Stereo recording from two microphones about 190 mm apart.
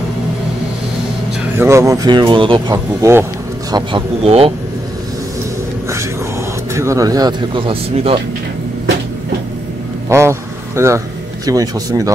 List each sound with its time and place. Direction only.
1.6 s speech: 15° right (ahead or behind)
3.7 s speech: 30° right (ahead or behind)
6.7 s speech: 15° right (ahead or behind)
10.0 s vehicle: 15° right (ahead or behind)
10.8 s speech: 15° right (ahead or behind)